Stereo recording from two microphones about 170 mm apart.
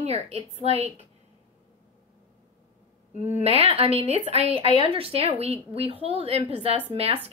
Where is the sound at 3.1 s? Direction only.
45° left (ahead or behind).